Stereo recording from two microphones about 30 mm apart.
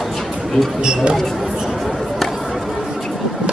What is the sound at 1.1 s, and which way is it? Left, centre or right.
Speech, centre.